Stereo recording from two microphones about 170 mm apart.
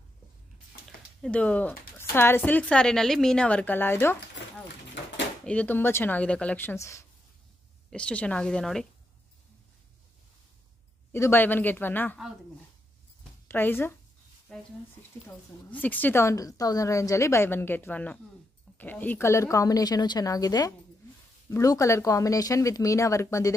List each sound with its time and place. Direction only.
0.8 s speech: 5° left (ahead or behind)
5.4 s a woman's voice: 10° left (ahead or behind)
11.1 s a woman's voice: 15° left (ahead or behind)
13.5 s a woman's voice: 10° left (ahead or behind)
15.7 s a woman's voice: 10° left (ahead or behind)